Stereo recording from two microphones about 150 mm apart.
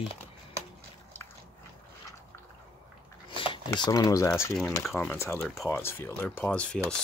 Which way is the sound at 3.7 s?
25° left (ahead or behind).